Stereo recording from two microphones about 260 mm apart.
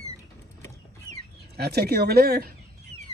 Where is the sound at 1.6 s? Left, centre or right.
Right.